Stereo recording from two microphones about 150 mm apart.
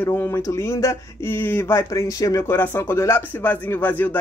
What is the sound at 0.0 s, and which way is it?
Speech, 15° left (ahead or behind).